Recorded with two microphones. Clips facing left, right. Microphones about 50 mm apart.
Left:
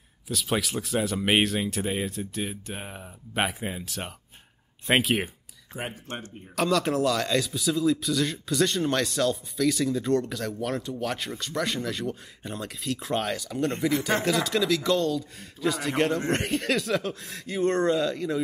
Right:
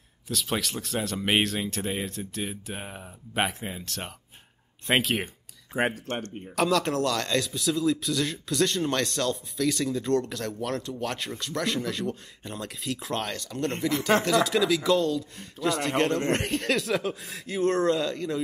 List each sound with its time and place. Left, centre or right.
0.3 s speech: centre
4.8 s a sound: centre
5.8 s speech: right
6.2 s speech: centre